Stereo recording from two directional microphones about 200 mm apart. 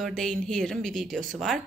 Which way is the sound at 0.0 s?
Centre (ahead or behind).